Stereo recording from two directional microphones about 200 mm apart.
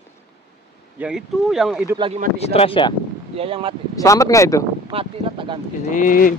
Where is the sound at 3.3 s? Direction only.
30° right (ahead or behind).